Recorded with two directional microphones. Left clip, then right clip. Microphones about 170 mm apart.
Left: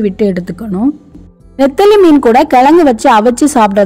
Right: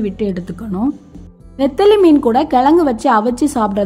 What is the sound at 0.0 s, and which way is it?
A woman's voice, 45° left (ahead or behind).